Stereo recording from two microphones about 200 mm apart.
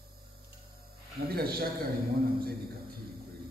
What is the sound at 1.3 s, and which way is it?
Speech, 50° right (ahead or behind).